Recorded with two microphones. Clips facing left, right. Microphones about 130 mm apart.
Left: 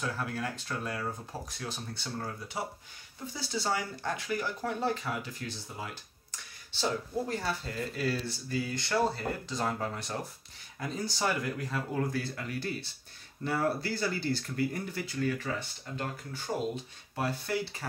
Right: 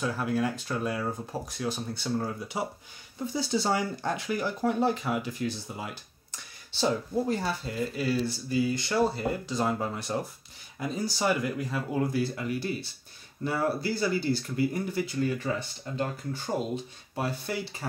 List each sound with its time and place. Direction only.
0.0 s speech: 10° right (ahead or behind)
17.1 s speech: 20° right (ahead or behind)